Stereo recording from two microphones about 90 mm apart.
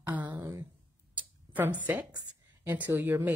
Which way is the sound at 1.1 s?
20° right (ahead or behind).